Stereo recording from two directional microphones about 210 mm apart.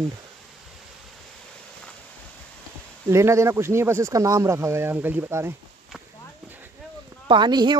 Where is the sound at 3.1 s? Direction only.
15° right (ahead or behind).